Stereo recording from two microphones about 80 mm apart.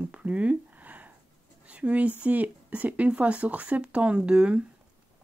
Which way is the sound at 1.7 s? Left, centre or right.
Centre.